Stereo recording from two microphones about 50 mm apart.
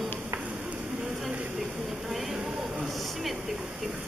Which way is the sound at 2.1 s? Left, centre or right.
Centre.